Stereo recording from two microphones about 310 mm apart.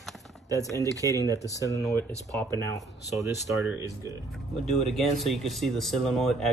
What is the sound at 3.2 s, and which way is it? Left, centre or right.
Speech, centre.